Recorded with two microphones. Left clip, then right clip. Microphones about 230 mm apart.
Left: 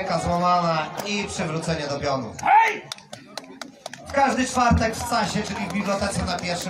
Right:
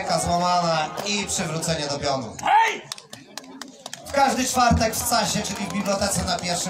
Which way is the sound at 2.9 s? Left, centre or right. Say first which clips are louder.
Even; left.